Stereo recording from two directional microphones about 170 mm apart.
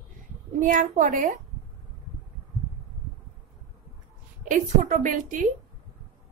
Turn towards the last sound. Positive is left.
turn(degrees=-50)  # may be behind; listen again after turning